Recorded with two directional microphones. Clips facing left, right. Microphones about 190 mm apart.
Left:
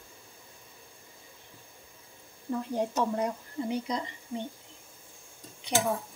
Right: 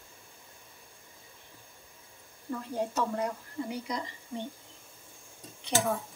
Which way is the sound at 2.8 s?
20° left (ahead or behind).